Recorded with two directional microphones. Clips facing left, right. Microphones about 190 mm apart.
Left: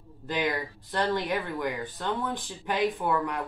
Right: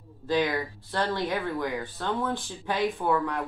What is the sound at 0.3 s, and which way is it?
Speech, 15° left (ahead or behind).